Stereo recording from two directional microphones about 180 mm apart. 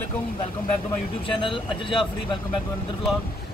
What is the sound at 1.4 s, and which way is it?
Speech, 30° left (ahead or behind).